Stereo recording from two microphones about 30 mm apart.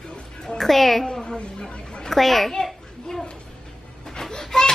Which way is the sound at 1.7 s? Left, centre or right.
Left.